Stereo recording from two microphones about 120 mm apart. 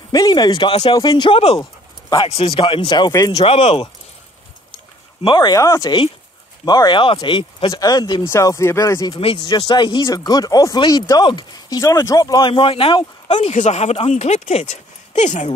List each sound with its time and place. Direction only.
0.1 s speech: 35° left (ahead or behind); by 0.9 s 50° left (ahead or behind)
0.9 s speech: 35° left (ahead or behind)
1.6 s dog: 35° left (ahead or behind)
2.2 s speech: 50° left (ahead or behind); by 3.4 s 30° left (ahead or behind)
3.4 s speech: 60° left (ahead or behind)
5.2 s speech: 40° left (ahead or behind)
5.6 s speech: 25° left (ahead or behind); by 7.7 s 45° left (ahead or behind)
7.7 s speech: 30° left (ahead or behind)
8.2 s speech: 25° left (ahead or behind)
9.1 s speech: 45° left (ahead or behind)
12.5 s speech: 50° left (ahead or behind); by 15.5 s 80° left